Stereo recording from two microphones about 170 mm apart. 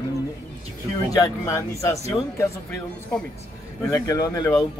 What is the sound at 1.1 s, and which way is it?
Speech, 20° left (ahead or behind).